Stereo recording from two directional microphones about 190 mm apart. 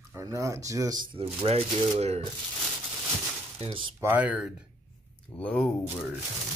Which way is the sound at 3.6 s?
25° right (ahead or behind).